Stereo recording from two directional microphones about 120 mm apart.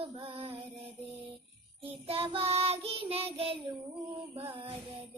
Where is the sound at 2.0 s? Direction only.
50° right (ahead or behind).